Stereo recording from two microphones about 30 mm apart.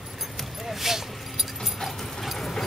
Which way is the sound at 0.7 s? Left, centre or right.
Centre.